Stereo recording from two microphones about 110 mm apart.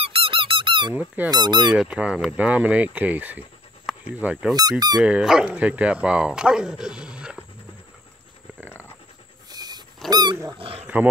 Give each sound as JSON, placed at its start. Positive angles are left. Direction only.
{"t": 0.0, "sound": "squeak", "side_deg": -55}
{"t": 0.9, "sound": "speech", "side_deg": -15}
{"t": 1.3, "sound": "dog", "side_deg": -40}
{"t": 1.7, "sound": "speech", "side_deg": -5}
{"t": 3.9, "sound": "a sound", "side_deg": 0}
{"t": 4.2, "sound": "speech", "side_deg": -10}
{"t": 4.6, "sound": "dog", "side_deg": -35}
{"t": 4.9, "sound": "speech", "side_deg": -5}
{"t": 8.6, "sound": "a sound", "side_deg": 20}
{"t": 9.5, "sound": "dog", "side_deg": -40}
{"t": 10.6, "sound": "speech", "side_deg": -65}